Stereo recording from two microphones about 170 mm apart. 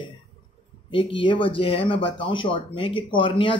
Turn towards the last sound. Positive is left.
turn(degrees=30)  # may be behind; listen again after turning